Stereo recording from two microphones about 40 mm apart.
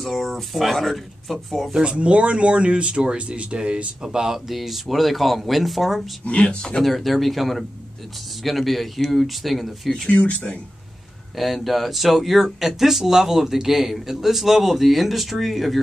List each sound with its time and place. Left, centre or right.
0.0 s speech: centre
1.7 s speech: right; by 6.0 s centre
6.2 s speech: left
6.8 s speech: centre
10.0 s speech: left
11.3 s speech: centre